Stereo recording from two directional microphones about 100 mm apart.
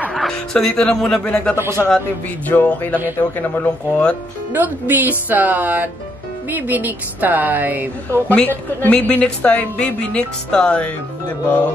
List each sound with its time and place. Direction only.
0.1 s a woman's voice: 5° left (ahead or behind)
4.5 s a woman's voice: 20° right (ahead or behind)
8.3 s a woman's voice: 15° left (ahead or behind)